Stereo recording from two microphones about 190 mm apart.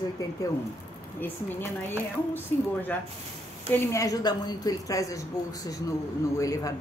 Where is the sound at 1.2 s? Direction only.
10° left (ahead or behind).